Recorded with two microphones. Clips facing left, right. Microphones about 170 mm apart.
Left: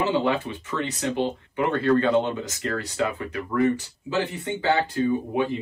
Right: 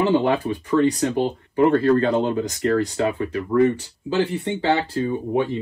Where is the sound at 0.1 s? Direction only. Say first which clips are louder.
Right 4 dB; 35° right (ahead or behind).